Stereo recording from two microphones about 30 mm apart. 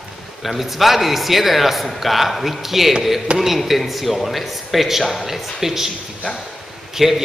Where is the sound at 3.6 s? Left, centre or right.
Centre.